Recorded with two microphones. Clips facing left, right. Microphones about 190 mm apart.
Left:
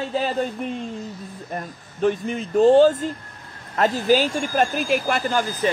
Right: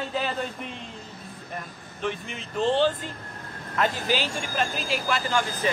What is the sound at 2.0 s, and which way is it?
Speech, 40° left (ahead or behind).